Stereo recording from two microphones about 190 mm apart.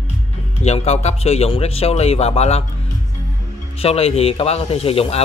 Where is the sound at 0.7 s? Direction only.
35° left (ahead or behind).